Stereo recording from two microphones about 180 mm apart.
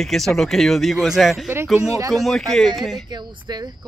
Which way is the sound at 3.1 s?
25° right (ahead or behind).